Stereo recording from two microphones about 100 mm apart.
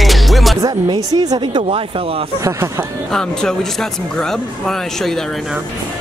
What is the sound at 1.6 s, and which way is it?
Speech, 70° right (ahead or behind).